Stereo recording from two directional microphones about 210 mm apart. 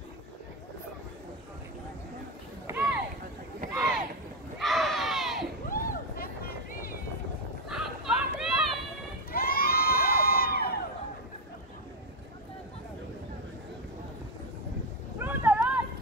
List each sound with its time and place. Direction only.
2.6 s a sound: 10° right (ahead or behind)
4.6 s crowd: centre (ahead or behind)
5.7 s vehicle: 40° left (ahead or behind)
7.7 s a sound: centre (ahead or behind)
9.3 s crowd: 45° left (ahead or behind)
15.1 s vehicle: 10° right (ahead or behind)